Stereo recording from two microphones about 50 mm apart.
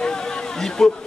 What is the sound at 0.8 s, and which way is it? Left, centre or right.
Speech, centre.